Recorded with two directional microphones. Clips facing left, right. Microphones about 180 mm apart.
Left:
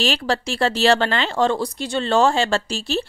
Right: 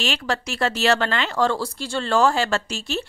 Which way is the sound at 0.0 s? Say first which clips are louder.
Left 4 dB; 35° left (ahead or behind).